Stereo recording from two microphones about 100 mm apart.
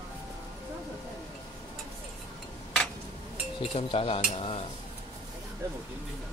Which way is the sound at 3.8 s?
65° left (ahead or behind).